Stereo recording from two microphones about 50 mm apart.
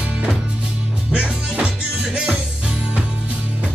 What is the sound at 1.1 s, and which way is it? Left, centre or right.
Music, right.